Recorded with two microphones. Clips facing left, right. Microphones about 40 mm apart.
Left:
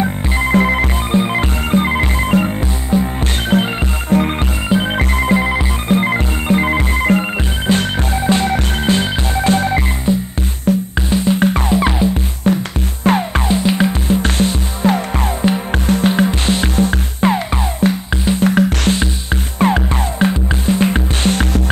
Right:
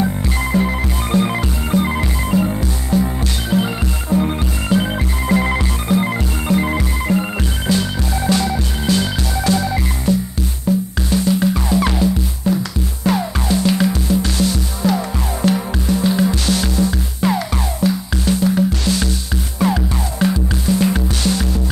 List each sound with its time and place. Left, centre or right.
0.0 s music: left
4.6 s music: left
4.9 s music: left
5.4 s music: centre
5.9 s music: left
10.1 s music: left
10.7 s music: left
11.1 s music: left
11.8 s music: left
12.5 s music: left
13.6 s music: left
18.4 s music: left
18.9 s music: left